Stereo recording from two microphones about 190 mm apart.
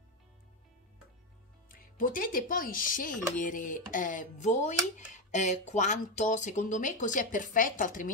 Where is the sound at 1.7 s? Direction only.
45° left (ahead or behind).